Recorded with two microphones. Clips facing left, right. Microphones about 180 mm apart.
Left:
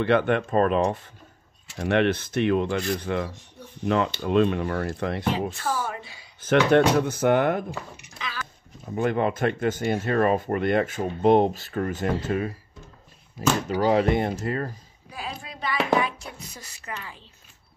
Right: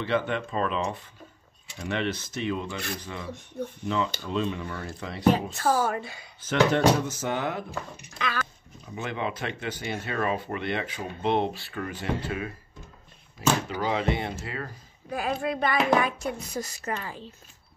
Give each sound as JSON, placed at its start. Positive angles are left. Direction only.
{"t": 0.0, "sound": "speech", "side_deg": 55}
{"t": 1.8, "sound": "speech", "side_deg": 60}
{"t": 3.3, "sound": "speech", "side_deg": -55}
{"t": 3.8, "sound": "speech", "side_deg": 60}
{"t": 5.3, "sound": "speech", "side_deg": -45}
{"t": 6.4, "sound": "speech", "side_deg": 60}
{"t": 8.2, "sound": "speech", "side_deg": -60}
{"t": 8.8, "sound": "speech", "side_deg": 50}
{"t": 13.7, "sound": "speech", "side_deg": 40}
{"t": 15.0, "sound": "speech", "side_deg": -55}